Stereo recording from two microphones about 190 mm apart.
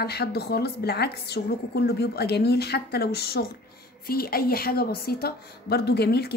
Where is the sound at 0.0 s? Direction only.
55° left (ahead or behind).